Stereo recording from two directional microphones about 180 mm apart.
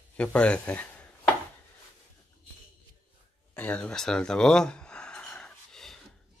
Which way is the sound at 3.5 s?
10° left (ahead or behind).